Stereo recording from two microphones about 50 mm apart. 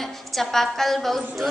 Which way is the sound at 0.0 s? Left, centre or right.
Centre.